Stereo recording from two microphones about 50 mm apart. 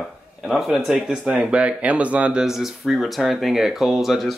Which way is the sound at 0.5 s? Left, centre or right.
Centre.